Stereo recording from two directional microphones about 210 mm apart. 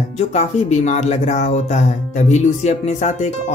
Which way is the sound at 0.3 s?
35° left (ahead or behind).